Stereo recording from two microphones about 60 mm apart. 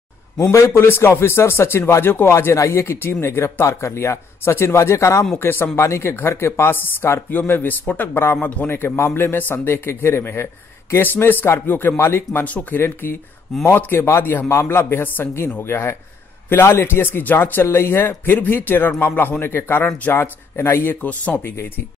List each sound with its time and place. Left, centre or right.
0.4 s speech: left
0.7 s a man's voice: left
5.3 s a man's voice: left